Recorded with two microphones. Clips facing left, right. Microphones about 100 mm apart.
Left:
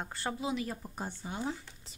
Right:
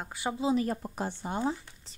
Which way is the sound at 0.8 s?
85° right.